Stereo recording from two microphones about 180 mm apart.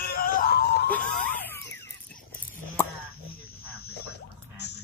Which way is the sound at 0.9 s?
10° left (ahead or behind).